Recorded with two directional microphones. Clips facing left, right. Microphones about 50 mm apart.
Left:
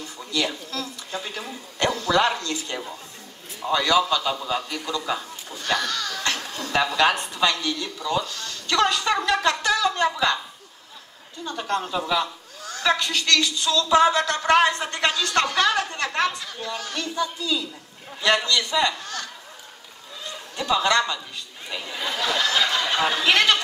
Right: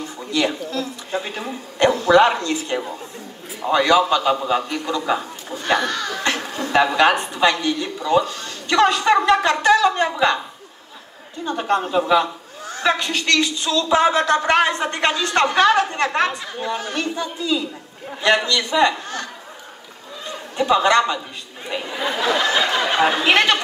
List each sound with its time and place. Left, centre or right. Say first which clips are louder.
0.3 s a man's voice: right 5 dB; right
11.4 s a man's voice: right 6 dB; right
20.5 s a man's voice: right 5 dB; right
21.6 s a sound: right 6 dB; right